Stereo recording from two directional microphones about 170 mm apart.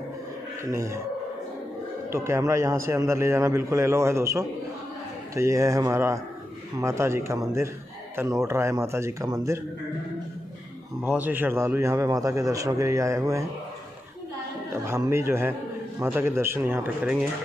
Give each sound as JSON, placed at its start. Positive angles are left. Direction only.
{"t": 0.7, "sound": "a man's voice", "side_deg": -20}
{"t": 2.0, "sound": "a man's voice", "side_deg": -15}
{"t": 11.1, "sound": "a man's voice", "side_deg": -10}
{"t": 14.9, "sound": "a man's voice", "side_deg": -15}